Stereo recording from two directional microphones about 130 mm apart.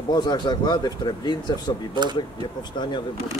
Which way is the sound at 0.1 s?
30° left (ahead or behind).